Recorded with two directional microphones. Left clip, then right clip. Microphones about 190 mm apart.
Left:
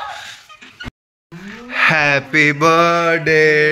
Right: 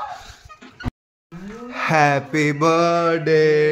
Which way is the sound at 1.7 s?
15° right (ahead or behind).